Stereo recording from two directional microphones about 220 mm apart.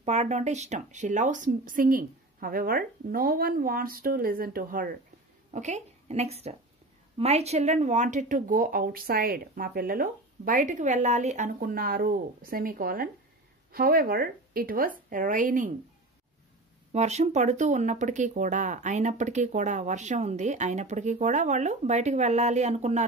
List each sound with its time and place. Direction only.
0.0 s speech: 30° right (ahead or behind)
16.9 s speech: 30° right (ahead or behind)